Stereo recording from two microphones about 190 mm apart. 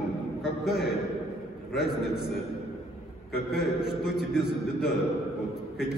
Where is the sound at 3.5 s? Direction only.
5° right (ahead or behind).